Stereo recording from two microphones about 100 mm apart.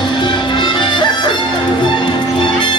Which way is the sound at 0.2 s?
50° left (ahead or behind).